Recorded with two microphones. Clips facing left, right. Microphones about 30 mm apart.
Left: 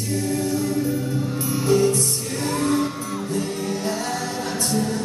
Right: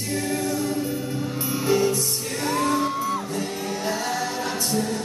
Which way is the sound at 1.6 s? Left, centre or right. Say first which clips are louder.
Left 3 dB; centre.